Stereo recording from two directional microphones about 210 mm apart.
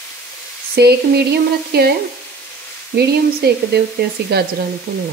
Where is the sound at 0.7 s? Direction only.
50° right (ahead or behind).